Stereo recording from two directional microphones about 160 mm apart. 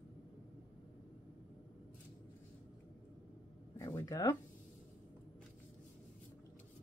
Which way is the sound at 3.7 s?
20° left (ahead or behind).